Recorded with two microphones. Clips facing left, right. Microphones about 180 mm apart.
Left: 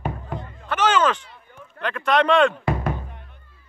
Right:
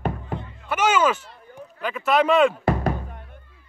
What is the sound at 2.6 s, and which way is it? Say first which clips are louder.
Music: right 2 dB; 40° right (ahead or behind).